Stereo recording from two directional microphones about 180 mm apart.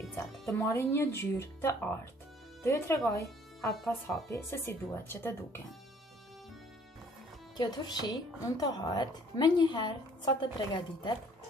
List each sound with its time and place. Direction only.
0.5 s speech: 15° left (ahead or behind)
7.5 s a woman's voice: 25° left (ahead or behind)